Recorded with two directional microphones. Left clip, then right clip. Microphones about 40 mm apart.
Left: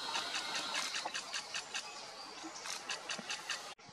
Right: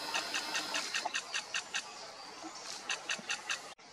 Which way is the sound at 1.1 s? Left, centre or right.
Centre.